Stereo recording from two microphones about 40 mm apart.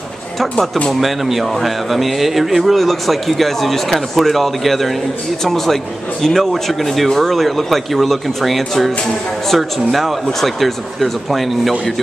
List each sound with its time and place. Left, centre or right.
0.9 s speech: centre